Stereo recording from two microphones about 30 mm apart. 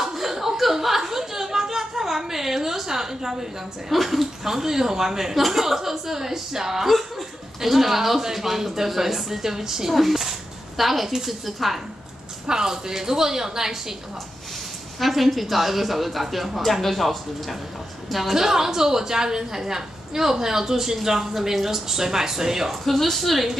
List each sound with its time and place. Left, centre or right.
0.0 s a sound: centre
3.9 s a woman's voice: centre
6.9 s a woman's voice: centre
12.4 s a woman's voice: centre
15.0 s a woman's voice: centre
18.1 s a woman's voice: centre
22.7 s a woman's voice: centre